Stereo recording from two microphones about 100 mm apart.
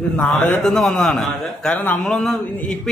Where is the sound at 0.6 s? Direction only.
5° left (ahead or behind).